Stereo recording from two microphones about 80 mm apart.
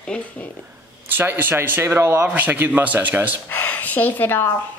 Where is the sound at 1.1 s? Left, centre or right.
Right.